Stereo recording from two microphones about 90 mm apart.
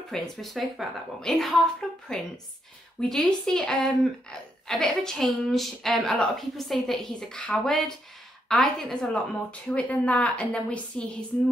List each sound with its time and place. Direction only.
0.1 s a woman's voice: centre (ahead or behind)